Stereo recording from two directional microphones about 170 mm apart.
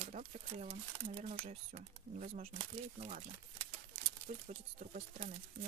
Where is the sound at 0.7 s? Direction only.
30° right (ahead or behind).